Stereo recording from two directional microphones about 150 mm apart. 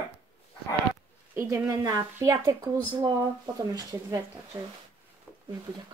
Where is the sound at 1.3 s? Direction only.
20° right (ahead or behind).